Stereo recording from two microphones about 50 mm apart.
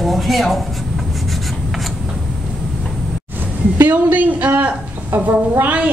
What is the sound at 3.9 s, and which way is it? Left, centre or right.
Speech, right.